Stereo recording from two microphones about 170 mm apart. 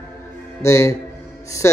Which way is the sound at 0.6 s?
15° left (ahead or behind).